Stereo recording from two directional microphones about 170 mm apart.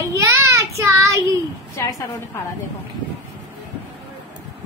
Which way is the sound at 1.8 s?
20° left (ahead or behind).